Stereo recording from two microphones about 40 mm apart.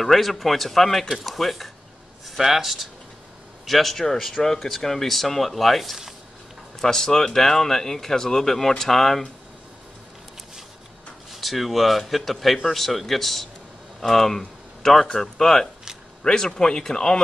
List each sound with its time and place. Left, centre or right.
0.0 s speech: centre
6.8 s speech: centre
11.3 s speech: centre